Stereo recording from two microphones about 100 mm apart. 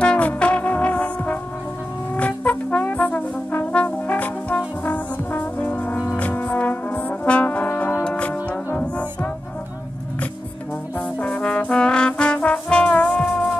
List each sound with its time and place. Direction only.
0.0 s brass instrument: 10° left (ahead or behind)
8.0 s music: 10° left (ahead or behind)
11.0 s trombone: 15° left (ahead or behind)